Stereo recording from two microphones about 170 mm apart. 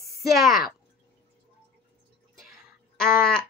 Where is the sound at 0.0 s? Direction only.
Centre (ahead or behind).